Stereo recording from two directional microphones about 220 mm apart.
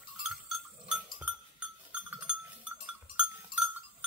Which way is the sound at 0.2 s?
5° right (ahead or behind).